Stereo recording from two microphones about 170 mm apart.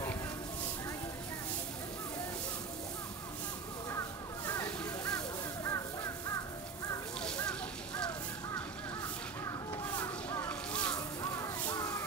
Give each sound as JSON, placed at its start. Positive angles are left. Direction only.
{"t": 5.6, "sound": "crow", "side_deg": 20}
{"t": 7.2, "sound": "fire", "side_deg": 5}
{"t": 9.4, "sound": "a sound", "side_deg": 10}
{"t": 11.0, "sound": "crow", "side_deg": 20}